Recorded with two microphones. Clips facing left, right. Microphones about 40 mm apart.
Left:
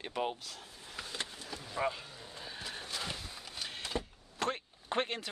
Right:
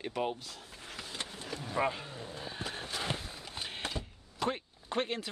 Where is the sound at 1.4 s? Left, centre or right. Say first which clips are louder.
Right 5 dB; right.